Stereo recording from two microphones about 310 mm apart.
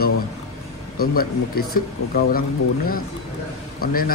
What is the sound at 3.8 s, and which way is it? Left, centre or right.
Speech, left.